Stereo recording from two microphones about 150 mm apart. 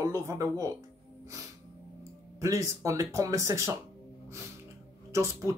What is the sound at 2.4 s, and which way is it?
Speech, 20° right (ahead or behind).